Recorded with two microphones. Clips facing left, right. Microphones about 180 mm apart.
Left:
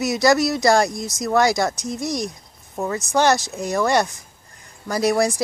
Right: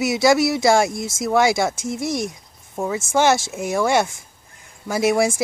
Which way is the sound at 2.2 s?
10° right (ahead or behind).